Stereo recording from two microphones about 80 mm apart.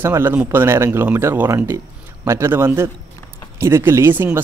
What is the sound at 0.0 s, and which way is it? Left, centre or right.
Speech, right.